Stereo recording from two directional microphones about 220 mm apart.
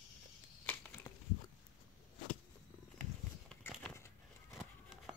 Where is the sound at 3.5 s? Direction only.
5° left (ahead or behind).